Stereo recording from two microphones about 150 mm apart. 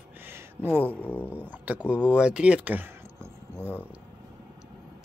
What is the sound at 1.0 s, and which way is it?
Speech, 10° left (ahead or behind).